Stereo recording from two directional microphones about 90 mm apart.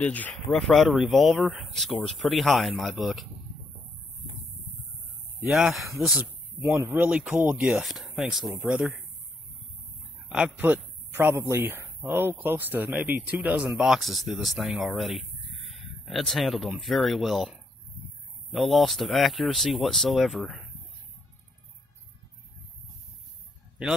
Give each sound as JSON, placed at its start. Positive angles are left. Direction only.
{"t": 0.0, "sound": "speech", "side_deg": 15}
{"t": 5.4, "sound": "speech", "side_deg": -5}
{"t": 6.8, "sound": "speech", "side_deg": -25}
{"t": 7.1, "sound": "speech", "side_deg": -15}
{"t": 7.6, "sound": "speech", "side_deg": -5}
{"t": 10.2, "sound": "a sound", "side_deg": -10}
{"t": 10.6, "sound": "speech", "side_deg": -20}
{"t": 13.7, "sound": "speech", "side_deg": -5}